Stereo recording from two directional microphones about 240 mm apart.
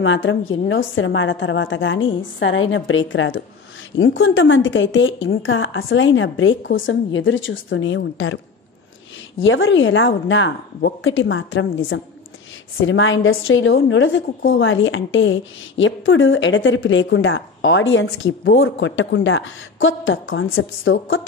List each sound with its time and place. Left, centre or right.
0.0 s a woman's voice: left
9.4 s a woman's voice: left